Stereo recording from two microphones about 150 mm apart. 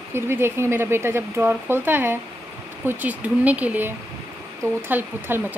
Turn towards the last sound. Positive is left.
turn(degrees=-15)  # may be behind; listen again after turning